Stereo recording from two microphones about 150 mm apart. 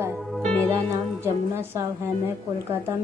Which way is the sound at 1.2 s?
15° right (ahead or behind).